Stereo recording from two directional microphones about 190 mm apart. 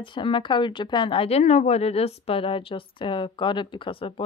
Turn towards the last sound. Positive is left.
turn(degrees=30)  # may be behind; listen again after turning